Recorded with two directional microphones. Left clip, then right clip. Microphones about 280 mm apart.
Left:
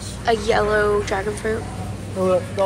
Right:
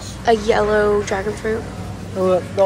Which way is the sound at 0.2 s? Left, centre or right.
Centre.